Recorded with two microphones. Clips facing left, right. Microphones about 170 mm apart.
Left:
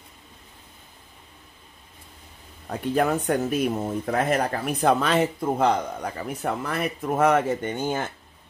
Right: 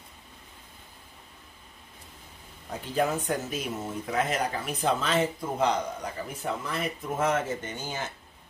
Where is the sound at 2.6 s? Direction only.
60° left (ahead or behind).